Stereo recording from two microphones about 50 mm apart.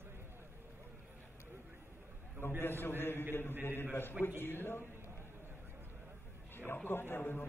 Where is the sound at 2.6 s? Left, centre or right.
Left.